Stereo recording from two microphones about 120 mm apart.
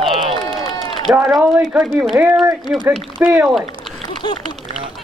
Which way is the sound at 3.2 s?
15° right (ahead or behind).